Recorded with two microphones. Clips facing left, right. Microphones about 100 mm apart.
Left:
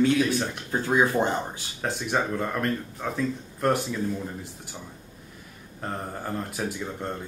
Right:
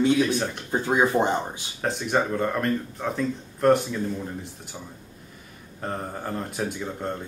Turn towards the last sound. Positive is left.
turn(degrees=0)  # may be behind; listen again after turning